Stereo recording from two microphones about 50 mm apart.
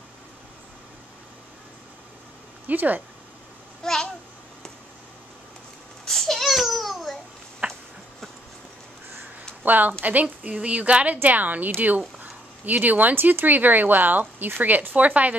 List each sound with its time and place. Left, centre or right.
2.6 s speech: right
3.8 s babbling: centre
6.0 s babbling: centre
7.6 s a sound: right
9.6 s a woman's voice: right
10.4 s speech: right